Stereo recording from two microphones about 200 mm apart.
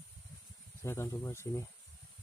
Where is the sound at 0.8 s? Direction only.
15° left (ahead or behind).